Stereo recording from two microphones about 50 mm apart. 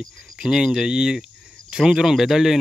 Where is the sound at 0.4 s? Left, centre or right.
Centre.